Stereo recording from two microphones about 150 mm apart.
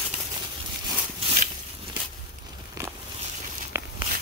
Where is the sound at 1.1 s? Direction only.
55° right (ahead or behind).